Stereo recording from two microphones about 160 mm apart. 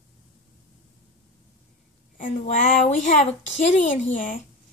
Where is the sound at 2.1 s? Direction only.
50° left (ahead or behind).